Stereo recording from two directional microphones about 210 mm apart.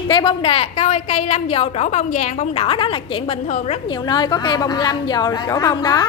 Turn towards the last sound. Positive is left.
turn(degrees=20)  # may be behind; listen again after turning